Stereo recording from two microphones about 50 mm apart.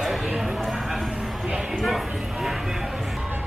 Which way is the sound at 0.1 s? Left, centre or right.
Centre.